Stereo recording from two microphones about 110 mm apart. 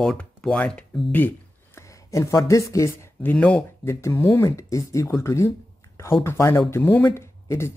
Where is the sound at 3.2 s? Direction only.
15° left (ahead or behind).